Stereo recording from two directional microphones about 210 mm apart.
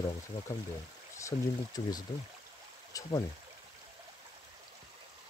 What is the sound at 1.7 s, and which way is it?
Speech, 20° left (ahead or behind).